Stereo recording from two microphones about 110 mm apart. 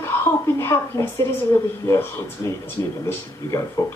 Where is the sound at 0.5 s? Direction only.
25° left (ahead or behind).